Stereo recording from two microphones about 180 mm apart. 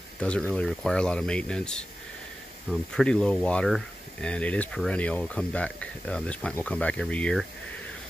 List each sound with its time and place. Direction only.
0.2 s speech: 5° left (ahead or behind)